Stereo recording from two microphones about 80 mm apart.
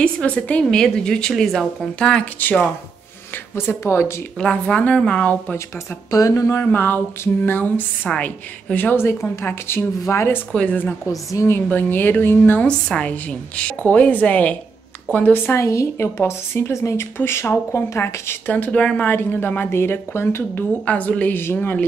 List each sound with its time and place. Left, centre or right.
0.0 s a woman's voice: centre
3.5 s a woman's voice: left
4.4 s a woman's voice: centre
6.0 s speech: left
6.5 s a woman's voice: left
10.5 s a woman's voice: centre
12.6 s a woman's voice: centre; by 18.4 s left
18.5 s a woman's voice: centre
20.8 s a woman's voice: centre
21.5 s a woman's voice: centre